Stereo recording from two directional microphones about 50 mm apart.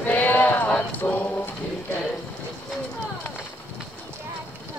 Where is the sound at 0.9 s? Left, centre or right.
Left.